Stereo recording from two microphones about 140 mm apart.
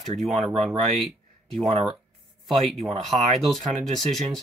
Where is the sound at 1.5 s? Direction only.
45° right (ahead or behind).